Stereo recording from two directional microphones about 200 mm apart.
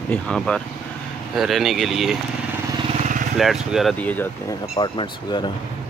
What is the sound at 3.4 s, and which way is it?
Speech, centre (ahead or behind).